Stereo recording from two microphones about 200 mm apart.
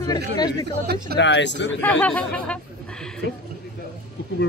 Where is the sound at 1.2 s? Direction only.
65° left (ahead or behind).